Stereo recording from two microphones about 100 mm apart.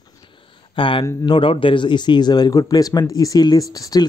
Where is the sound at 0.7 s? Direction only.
55° left (ahead or behind).